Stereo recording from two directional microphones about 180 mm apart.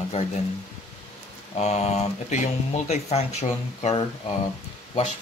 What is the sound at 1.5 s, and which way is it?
Speech, 35° left (ahead or behind).